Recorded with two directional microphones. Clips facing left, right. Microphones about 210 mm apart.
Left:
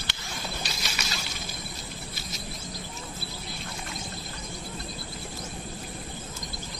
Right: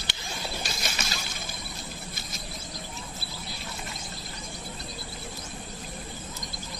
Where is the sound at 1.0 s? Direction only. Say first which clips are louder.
Right 1 dB; 50° right (ahead or behind).